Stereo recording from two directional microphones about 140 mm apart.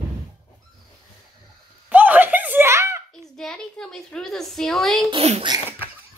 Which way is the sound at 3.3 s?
5° left (ahead or behind).